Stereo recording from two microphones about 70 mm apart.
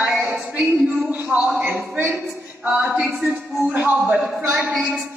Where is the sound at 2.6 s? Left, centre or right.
Right.